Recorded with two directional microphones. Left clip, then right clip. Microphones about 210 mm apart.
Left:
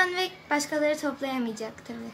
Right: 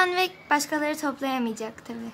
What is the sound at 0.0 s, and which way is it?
Speech, 30° right (ahead or behind).